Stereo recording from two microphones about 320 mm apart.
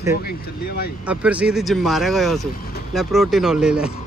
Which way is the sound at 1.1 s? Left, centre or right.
Centre.